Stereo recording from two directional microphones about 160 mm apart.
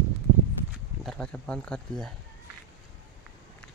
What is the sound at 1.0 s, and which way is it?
Speech, 5° left (ahead or behind).